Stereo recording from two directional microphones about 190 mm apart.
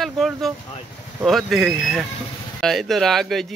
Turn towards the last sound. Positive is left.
turn(degrees=0)  # may be behind; listen again after turning